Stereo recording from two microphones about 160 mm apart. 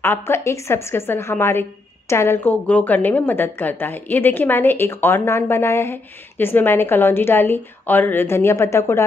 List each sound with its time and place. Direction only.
0.0 s a woman's voice: 15° left (ahead or behind)